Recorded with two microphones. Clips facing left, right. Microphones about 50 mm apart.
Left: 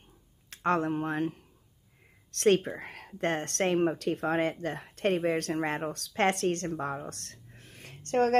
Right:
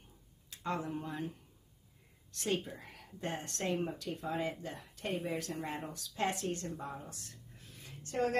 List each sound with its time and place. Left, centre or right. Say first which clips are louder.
0.5 s a woman's voice: left 10 dB; left